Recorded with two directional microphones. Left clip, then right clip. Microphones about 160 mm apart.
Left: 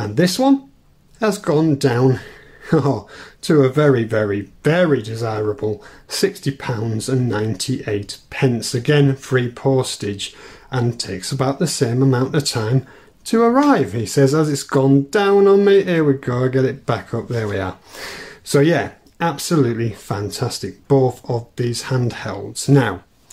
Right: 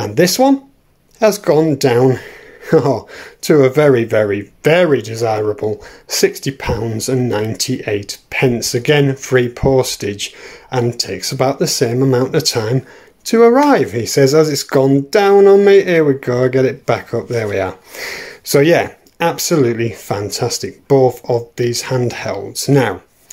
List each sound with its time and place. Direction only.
0.0 s speech: 25° right (ahead or behind)